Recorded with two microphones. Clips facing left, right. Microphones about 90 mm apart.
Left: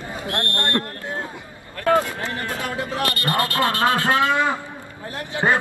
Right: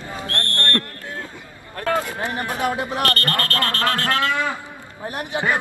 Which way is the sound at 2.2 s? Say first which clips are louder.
Right 4 dB; 20° right (ahead or behind).